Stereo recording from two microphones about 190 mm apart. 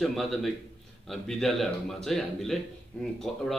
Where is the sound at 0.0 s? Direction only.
Centre (ahead or behind).